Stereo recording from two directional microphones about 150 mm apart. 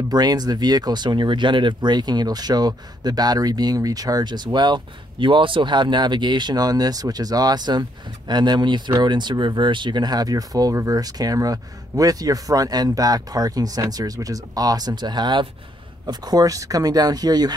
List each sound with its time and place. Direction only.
0.1 s speech: 25° right (ahead or behind)